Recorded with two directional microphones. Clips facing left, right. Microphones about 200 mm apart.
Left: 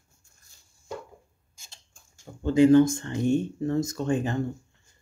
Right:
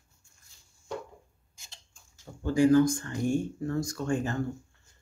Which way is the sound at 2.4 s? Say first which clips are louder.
Left 4 dB; 20° left (ahead or behind).